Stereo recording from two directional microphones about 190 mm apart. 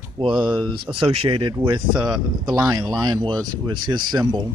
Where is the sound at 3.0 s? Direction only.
20° right (ahead or behind).